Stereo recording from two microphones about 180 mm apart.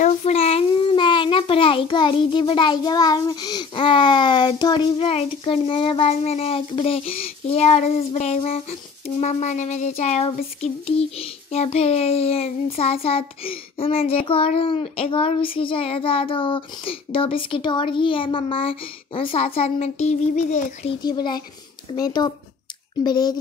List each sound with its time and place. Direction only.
0.0 s a child's voice: 35° left (ahead or behind)
21.0 s a child's voice: 25° left (ahead or behind)